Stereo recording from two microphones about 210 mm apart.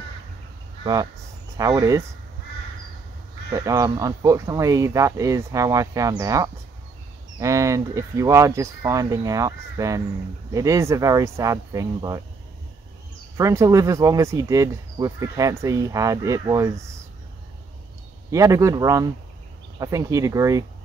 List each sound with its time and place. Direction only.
1.6 s speech: 15° right (ahead or behind)
3.5 s speech: 15° right (ahead or behind)
13.4 s speech: 15° right (ahead or behind)
18.3 s speech: 15° right (ahead or behind)